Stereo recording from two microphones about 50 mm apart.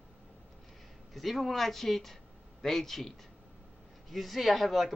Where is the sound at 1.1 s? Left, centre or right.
Centre.